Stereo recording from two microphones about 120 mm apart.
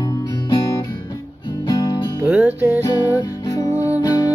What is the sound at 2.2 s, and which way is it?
Music, 10° right (ahead or behind).